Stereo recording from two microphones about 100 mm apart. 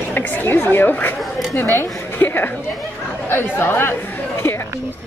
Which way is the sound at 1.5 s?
30° left (ahead or behind).